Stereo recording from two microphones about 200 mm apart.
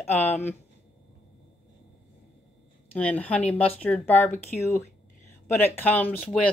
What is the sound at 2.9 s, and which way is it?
Speech, 5° left (ahead or behind).